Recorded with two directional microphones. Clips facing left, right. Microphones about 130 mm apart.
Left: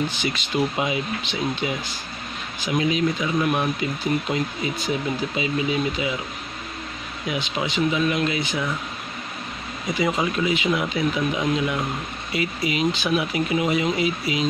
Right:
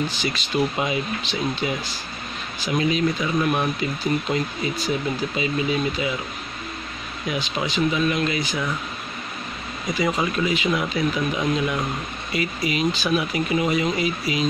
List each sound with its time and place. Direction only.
0.2 s speech: 15° left (ahead or behind)
7.2 s speech: 20° left (ahead or behind)
9.9 s speech: 20° left (ahead or behind)